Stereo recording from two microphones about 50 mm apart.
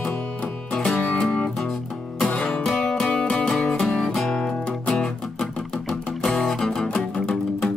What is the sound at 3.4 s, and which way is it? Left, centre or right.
Music, centre.